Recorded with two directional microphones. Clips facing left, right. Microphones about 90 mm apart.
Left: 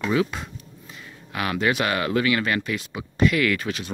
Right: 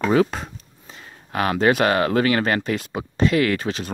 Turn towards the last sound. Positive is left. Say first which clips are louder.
# right 2 dB
turn(degrees=-30)  # may be behind; listen again after turning